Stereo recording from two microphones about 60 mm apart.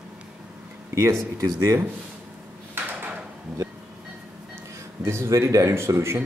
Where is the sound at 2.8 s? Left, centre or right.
Right.